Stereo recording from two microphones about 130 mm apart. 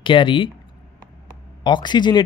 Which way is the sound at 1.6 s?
35° left (ahead or behind).